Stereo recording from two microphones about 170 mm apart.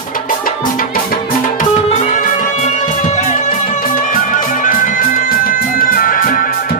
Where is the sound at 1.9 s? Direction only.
40° left (ahead or behind).